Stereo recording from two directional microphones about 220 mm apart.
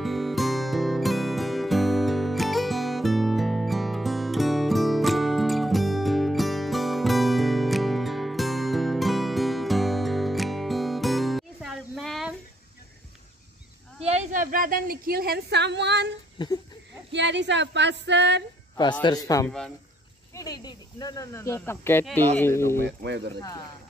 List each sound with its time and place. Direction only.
0.0 s music: centre (ahead or behind)
14.0 s a woman's voice: 35° right (ahead or behind); by 16.1 s 50° right (ahead or behind)
16.4 s a sound: 20° left (ahead or behind)
17.1 s speech: 55° right (ahead or behind)
19.0 s speech: 15° left (ahead or behind)
22.8 s speech: 50° right (ahead or behind)